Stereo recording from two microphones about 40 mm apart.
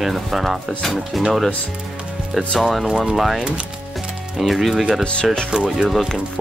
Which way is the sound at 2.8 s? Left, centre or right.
Right.